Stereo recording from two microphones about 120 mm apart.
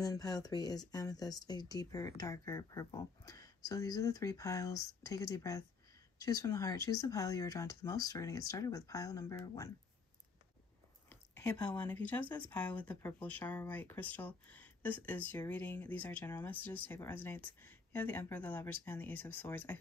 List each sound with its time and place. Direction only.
0.0 s speech: 30° left (ahead or behind)
11.1 s a sound: 20° left (ahead or behind)
11.5 s speech: 15° left (ahead or behind)